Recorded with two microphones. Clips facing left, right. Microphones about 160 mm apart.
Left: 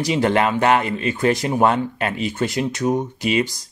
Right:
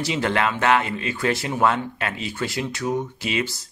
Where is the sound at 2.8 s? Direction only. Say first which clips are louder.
Left 4 dB; 20° left (ahead or behind).